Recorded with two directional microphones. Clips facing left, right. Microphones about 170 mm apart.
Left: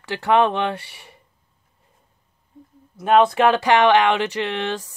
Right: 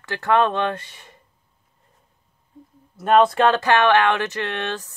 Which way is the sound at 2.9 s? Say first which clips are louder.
Even; centre (ahead or behind).